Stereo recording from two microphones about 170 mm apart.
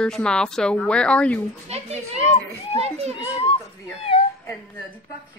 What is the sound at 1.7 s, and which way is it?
A woman's voice, 40° right (ahead or behind).